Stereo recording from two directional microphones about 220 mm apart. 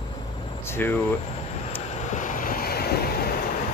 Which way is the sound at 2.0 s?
35° left (ahead or behind).